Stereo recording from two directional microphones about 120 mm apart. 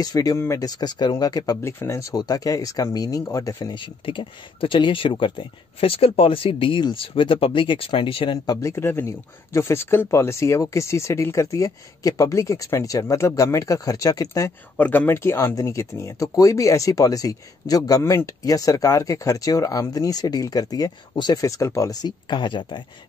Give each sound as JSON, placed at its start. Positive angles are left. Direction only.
{"t": 0.0, "sound": "speech", "side_deg": 30}
{"t": 8.5, "sound": "speech", "side_deg": 25}
{"t": 14.8, "sound": "speech", "side_deg": 15}